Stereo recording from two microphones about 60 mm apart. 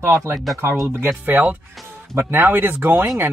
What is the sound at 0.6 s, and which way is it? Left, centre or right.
Speech, right.